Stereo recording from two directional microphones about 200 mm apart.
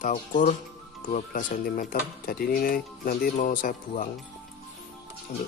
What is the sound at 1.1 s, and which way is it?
Speech, 40° left (ahead or behind).